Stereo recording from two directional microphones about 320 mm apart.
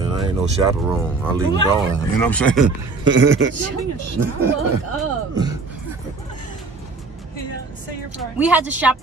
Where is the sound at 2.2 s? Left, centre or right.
Centre.